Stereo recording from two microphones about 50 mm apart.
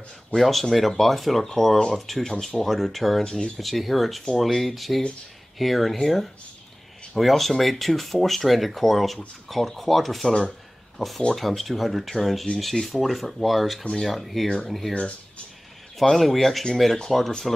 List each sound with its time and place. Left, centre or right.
0.4 s speech: centre
15.0 s speech: left
16.0 s speech: centre